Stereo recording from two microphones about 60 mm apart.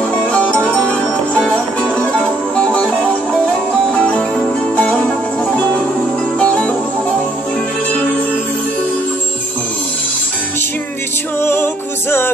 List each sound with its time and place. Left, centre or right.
0.3 s music: centre
2.5 s music: centre
3.9 s music: centre
6.4 s music: centre
11.4 s music: left